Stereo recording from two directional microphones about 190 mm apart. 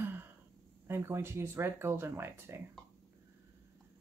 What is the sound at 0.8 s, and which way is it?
Speech, 15° right (ahead or behind).